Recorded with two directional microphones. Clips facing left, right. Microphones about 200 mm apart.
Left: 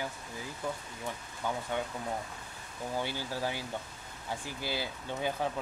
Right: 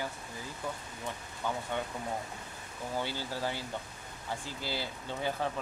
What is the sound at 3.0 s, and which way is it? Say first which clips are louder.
Speech: even; 15° left (ahead or behind).